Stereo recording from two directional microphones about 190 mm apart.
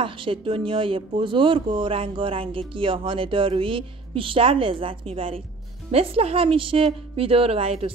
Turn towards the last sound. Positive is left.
turn(degrees=-30)  # may be behind; listen again after turning